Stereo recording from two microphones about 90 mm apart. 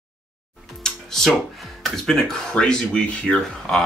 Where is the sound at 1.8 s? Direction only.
5° left (ahead or behind).